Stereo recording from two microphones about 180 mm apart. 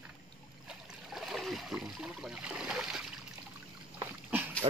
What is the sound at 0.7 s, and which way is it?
Trickle, centre (ahead or behind).